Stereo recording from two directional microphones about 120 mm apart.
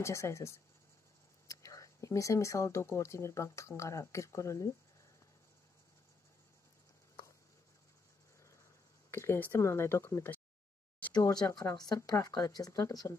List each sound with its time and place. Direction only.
0.0 s speech: 25° left (ahead or behind)
9.1 s speech: 20° left (ahead or behind)
11.1 s a woman's voice: 30° left (ahead or behind)